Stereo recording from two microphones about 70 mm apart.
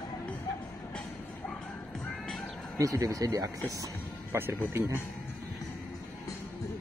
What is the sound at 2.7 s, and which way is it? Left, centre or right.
Speech, right.